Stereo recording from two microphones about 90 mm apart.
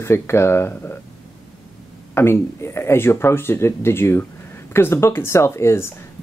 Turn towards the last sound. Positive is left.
turn(degrees=30)  # may be behind; listen again after turning